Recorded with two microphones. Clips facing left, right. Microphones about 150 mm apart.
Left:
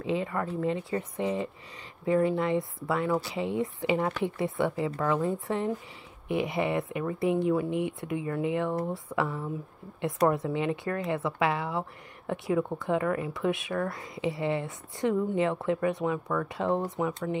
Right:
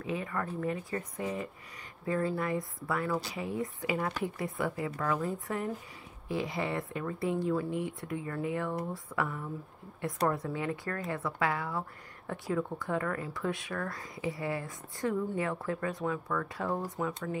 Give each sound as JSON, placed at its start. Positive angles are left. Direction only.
{"t": 0.0, "sound": "speech", "side_deg": 25}